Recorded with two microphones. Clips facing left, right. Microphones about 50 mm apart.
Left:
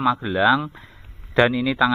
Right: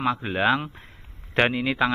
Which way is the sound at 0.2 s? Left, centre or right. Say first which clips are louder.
Left 4 dB; right.